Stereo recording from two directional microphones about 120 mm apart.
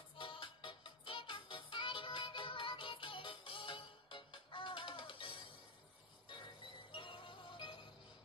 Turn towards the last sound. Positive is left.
turn(degrees=45)  # may be behind; listen again after turning